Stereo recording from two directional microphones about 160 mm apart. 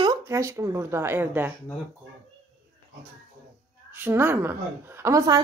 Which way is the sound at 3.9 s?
15° right (ahead or behind).